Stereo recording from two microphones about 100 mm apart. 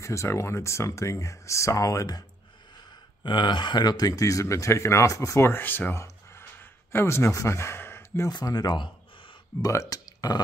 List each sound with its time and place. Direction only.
0.0 s speech: 30° left (ahead or behind)
3.3 s speech: 50° left (ahead or behind); by 6.0 s 20° left (ahead or behind)
6.0 s a sound: 25° left (ahead or behind)
8.3 s speech: 40° left (ahead or behind)
9.6 s speech: 35° left (ahead or behind)